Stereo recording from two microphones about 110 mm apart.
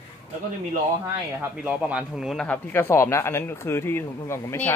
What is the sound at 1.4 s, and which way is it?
Speech, 10° right (ahead or behind).